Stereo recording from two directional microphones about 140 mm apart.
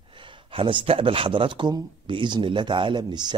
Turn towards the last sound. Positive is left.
turn(degrees=-30)  # may be behind; listen again after turning